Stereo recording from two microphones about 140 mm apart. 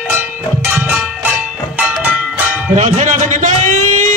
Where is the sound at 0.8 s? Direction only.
10° right (ahead or behind).